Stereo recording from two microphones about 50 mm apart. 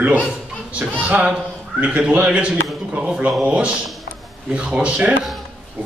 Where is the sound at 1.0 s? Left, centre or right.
Right.